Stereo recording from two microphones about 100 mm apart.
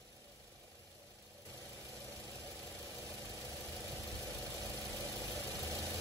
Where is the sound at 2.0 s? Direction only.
35° right (ahead or behind).